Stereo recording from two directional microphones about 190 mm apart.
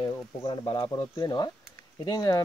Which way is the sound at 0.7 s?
20° left (ahead or behind).